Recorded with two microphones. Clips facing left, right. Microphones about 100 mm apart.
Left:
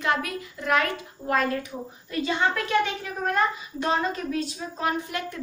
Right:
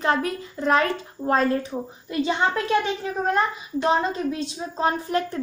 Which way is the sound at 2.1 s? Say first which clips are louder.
Right 3 dB; 20° right (ahead or behind).